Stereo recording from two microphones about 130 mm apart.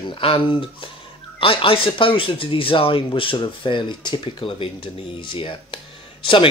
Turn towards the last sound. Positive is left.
turn(degrees=40)  # may be behind; listen again after turning